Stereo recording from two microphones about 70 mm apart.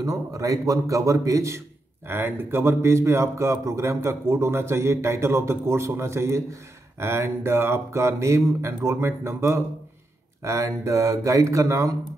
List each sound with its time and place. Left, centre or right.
0.0 s speech: right
2.0 s speech: right